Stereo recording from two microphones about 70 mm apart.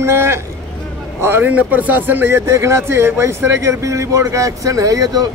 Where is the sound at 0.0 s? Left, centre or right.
Right.